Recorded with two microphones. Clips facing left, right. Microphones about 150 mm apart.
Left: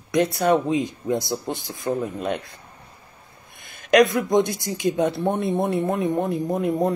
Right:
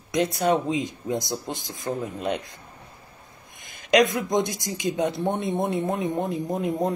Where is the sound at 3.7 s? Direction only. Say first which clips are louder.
Left 3 dB; 15° right (ahead or behind).